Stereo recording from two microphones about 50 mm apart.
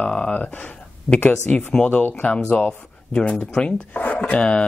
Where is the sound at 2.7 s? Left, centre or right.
Centre.